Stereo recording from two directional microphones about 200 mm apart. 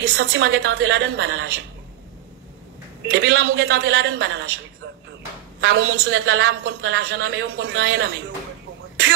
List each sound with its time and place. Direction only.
0.2 s a woman's voice: 60° right (ahead or behind)
3.1 s a woman's voice: 55° right (ahead or behind)
5.7 s a woman's voice: 55° right (ahead or behind)
6.1 s a woman's voice: 85° right; by 7.2 s 60° right (ahead or behind)
7.2 s a man's voice: 85° right